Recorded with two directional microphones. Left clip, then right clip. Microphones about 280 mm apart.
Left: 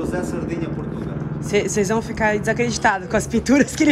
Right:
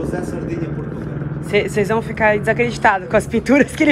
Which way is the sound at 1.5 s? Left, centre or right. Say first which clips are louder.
Right 3 dB; left.